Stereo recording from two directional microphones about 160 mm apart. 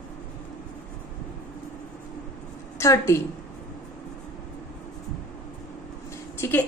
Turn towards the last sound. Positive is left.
turn(degrees=15)  # may be behind; listen again after turning